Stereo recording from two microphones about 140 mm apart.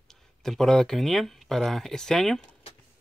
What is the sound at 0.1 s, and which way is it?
Speech, 5° left (ahead or behind).